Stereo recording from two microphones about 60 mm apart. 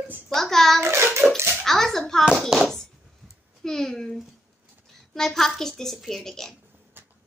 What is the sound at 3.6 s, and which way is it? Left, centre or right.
A child's voice, centre.